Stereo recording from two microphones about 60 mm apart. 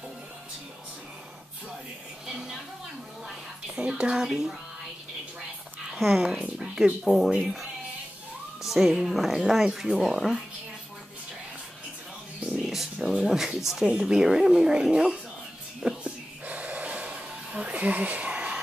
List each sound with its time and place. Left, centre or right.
2.2 s speech: centre
3.7 s speech: centre
5.9 s speech: centre
8.6 s speech: centre
12.5 s a sound: centre
13.0 s speech: centre
16.0 s gasp: right